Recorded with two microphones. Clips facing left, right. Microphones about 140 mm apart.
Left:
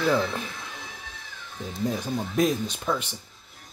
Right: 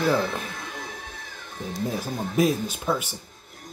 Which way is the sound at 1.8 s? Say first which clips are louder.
Left 2 dB; 5° right (ahead or behind).